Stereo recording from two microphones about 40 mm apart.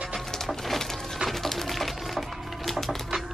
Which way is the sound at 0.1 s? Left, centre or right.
Centre.